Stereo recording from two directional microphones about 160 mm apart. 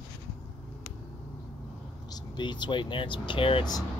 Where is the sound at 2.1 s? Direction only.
25° left (ahead or behind).